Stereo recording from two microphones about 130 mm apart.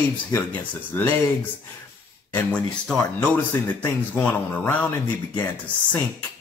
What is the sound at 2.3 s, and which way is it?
Speech, 10° left (ahead or behind).